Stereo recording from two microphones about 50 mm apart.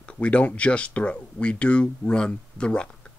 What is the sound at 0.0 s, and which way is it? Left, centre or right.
Speech, left.